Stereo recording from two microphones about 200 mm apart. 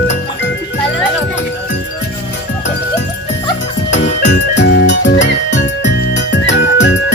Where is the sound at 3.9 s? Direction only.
65° left (ahead or behind).